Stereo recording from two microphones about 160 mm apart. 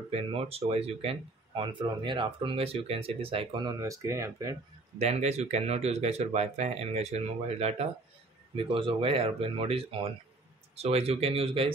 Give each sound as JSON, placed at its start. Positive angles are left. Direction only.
{"t": 0.1, "sound": "speech", "side_deg": -35}
{"t": 4.9, "sound": "speech", "side_deg": -40}